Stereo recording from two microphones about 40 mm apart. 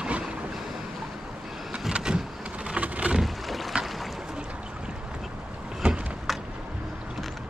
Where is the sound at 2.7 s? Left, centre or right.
Right.